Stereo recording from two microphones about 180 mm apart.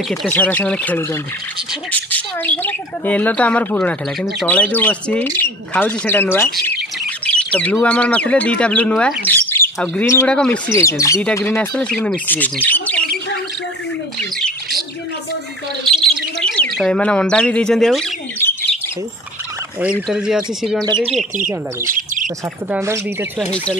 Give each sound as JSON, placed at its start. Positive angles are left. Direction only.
{"t": 0.1, "sound": "speech", "side_deg": 5}
{"t": 7.2, "sound": "bird", "side_deg": 5}
{"t": 7.7, "sound": "speech", "side_deg": 5}
{"t": 10.7, "sound": "speech", "side_deg": 15}
{"t": 15.8, "sound": "bird", "side_deg": 0}
{"t": 16.5, "sound": "speech", "side_deg": 5}
{"t": 18.4, "sound": "bird", "side_deg": 15}
{"t": 19.8, "sound": "speech", "side_deg": -5}
{"t": 20.8, "sound": "speech", "side_deg": -25}
{"t": 21.8, "sound": "bird", "side_deg": -50}
{"t": 22.7, "sound": "speech", "side_deg": -15}
{"t": 23.5, "sound": "speech", "side_deg": 5}